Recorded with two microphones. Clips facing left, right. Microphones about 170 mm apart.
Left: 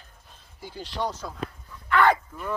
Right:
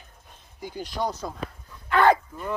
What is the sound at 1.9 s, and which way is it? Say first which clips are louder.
Livestock: right 2 dB; 25° right (ahead or behind).